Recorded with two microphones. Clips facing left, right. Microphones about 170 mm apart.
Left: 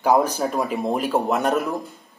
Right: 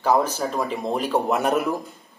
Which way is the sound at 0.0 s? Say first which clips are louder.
Left 2 dB; 15° left (ahead or behind).